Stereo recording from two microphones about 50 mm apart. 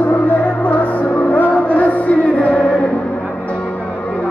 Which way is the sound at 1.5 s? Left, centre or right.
Left.